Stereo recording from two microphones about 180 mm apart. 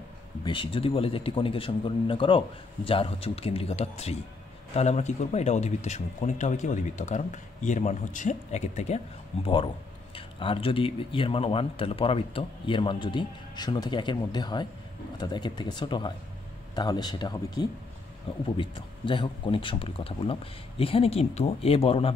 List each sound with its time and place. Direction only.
0.4 s speech: 25° left (ahead or behind)